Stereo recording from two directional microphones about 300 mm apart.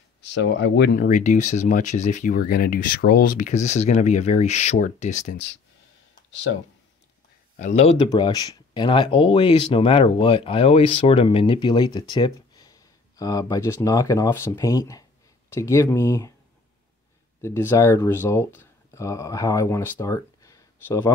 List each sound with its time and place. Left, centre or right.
0.3 s speech: left
7.5 s speech: left
17.4 s speech: centre